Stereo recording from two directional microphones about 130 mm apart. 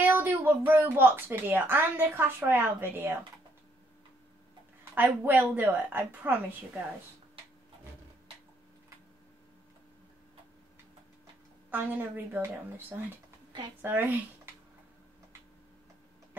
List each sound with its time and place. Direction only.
0.0 s speech: 15° right (ahead or behind)
4.9 s speech: 15° right (ahead or behind)
11.7 s speech: 15° right (ahead or behind)